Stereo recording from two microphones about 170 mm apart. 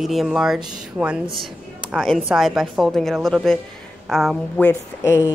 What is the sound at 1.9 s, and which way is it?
Speech, centre (ahead or behind).